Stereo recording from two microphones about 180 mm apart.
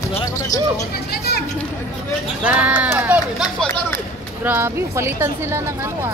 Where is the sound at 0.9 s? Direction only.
60° left (ahead or behind).